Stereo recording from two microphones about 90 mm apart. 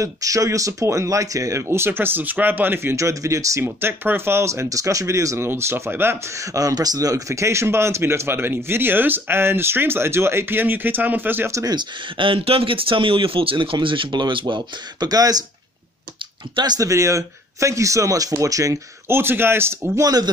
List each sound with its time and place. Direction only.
0.0 s speech: 40° right (ahead or behind)
3.6 s speech: 25° right (ahead or behind)
11.6 s speech: 55° right (ahead or behind); by 13.7 s 85° right
13.7 s speech: 65° right (ahead or behind); by 15.4 s 45° right (ahead or behind)
16.5 s speech: 50° right (ahead or behind); by 19.9 s 25° right (ahead or behind)
20.0 s speech: 45° right (ahead or behind)